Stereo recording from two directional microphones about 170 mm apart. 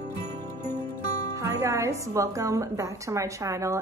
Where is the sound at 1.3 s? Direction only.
15° right (ahead or behind).